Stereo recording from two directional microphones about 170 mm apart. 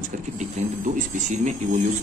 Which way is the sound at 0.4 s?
45° right (ahead or behind).